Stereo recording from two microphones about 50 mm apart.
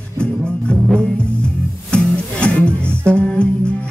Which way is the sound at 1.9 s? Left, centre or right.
Left.